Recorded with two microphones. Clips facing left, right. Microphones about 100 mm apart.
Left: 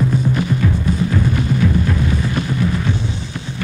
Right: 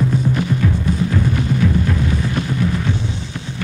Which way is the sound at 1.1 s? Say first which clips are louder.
Left 1 dB; 20° left (ahead or behind).